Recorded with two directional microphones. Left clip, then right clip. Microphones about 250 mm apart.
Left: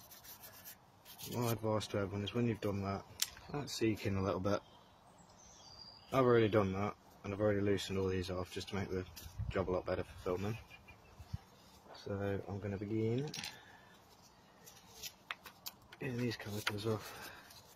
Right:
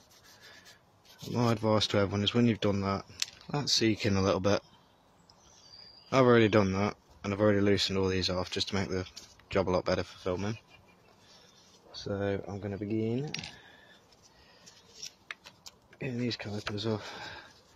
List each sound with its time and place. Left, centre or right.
1.4 s speech: right
6.0 s speech: right
12.0 s speech: right
16.0 s speech: right